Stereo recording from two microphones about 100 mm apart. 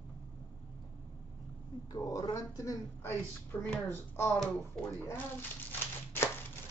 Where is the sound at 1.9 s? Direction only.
35° left (ahead or behind).